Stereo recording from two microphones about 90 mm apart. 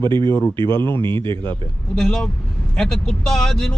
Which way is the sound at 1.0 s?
65° right (ahead or behind).